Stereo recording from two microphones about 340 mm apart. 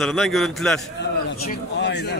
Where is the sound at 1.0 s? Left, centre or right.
Left.